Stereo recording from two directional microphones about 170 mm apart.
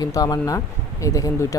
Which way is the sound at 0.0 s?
20° left (ahead or behind).